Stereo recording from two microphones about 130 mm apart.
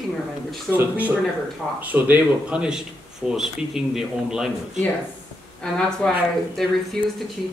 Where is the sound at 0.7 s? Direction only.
15° right (ahead or behind).